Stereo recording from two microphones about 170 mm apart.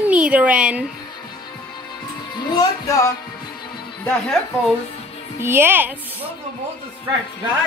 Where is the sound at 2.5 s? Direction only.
20° left (ahead or behind).